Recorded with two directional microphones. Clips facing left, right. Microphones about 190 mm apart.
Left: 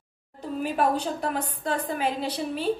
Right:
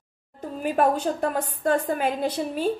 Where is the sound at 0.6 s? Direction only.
50° right (ahead or behind).